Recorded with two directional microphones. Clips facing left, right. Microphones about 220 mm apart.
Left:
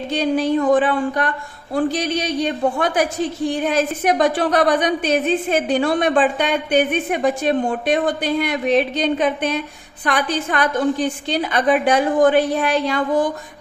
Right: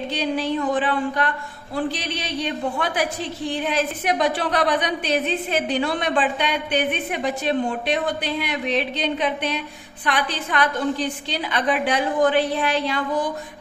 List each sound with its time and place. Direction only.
0.1 s a woman's voice: 45° left (ahead or behind)